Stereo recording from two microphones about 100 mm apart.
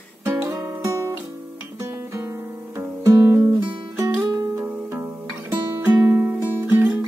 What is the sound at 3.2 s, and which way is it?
Music, 25° right (ahead or behind).